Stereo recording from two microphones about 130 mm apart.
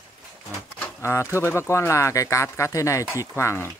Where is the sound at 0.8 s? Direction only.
20° left (ahead or behind).